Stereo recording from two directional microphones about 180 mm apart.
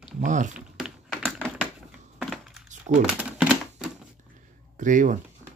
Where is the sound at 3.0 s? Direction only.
5° right (ahead or behind).